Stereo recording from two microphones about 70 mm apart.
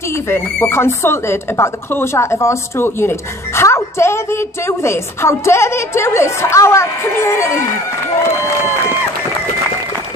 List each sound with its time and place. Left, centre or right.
0.1 s speech: left